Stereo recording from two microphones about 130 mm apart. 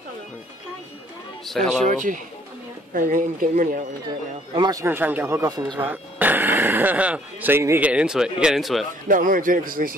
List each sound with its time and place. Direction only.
1.5 s speech: 5° left (ahead or behind)
1.8 s speech: 75° right (ahead or behind)
2.9 s speech: 90° right
4.6 s speech: 30° right (ahead or behind)
4.8 s speech: 15° right (ahead or behind)
9.0 s speech: 90° right